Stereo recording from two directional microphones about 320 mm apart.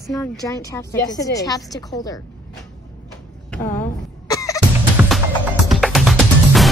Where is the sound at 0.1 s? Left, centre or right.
Centre.